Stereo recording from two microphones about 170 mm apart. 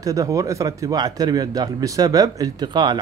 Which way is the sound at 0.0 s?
20° right (ahead or behind).